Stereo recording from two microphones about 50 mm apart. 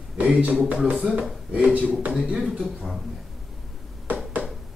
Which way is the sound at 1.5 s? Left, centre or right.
Right.